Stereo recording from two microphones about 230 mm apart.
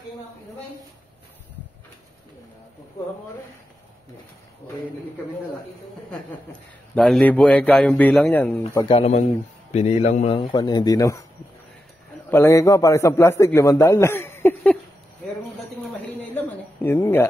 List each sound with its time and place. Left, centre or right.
7.0 s a man's voice: centre
8.6 s a man's voice: left
12.3 s a man's voice: centre
16.2 s a sound: centre